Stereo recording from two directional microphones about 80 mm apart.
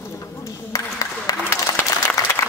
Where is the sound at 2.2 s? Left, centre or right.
Left.